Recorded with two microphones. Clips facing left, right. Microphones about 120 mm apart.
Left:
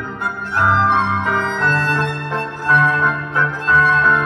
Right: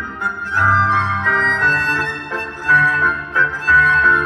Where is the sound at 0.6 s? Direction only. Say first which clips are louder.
Left 1 dB; 20° left (ahead or behind).